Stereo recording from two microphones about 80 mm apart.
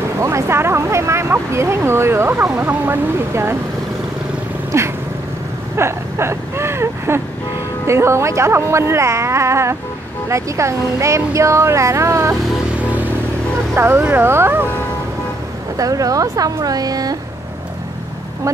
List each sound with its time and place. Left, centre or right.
0.2 s speech: right
4.7 s speech: right
5.8 s a sound: right
7.8 s speech: right
13.7 s speech: right
15.8 s speech: right